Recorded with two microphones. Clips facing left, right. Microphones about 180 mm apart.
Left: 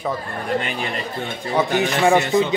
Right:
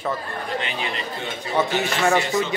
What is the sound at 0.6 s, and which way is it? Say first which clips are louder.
Speech: left 3 dB; 50° left (ahead or behind).